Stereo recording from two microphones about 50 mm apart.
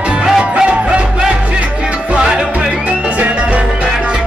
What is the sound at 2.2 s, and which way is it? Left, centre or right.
Music, centre.